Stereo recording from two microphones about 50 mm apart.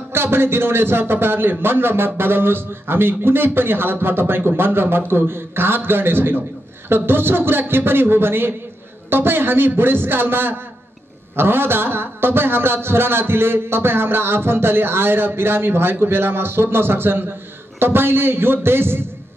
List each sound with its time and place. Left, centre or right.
0.1 s a man's voice: right